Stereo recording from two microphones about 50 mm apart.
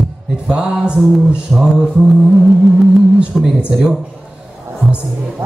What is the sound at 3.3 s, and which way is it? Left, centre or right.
Mantra, centre.